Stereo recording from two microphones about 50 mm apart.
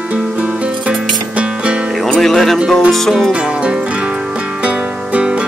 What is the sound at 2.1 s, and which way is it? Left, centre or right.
Music, centre.